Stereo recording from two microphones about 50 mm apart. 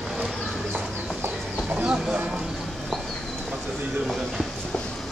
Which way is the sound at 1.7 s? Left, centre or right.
Right.